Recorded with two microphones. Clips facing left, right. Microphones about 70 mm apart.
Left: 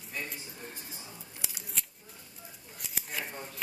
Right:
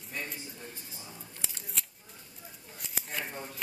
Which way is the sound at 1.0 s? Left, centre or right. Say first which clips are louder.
Even; centre.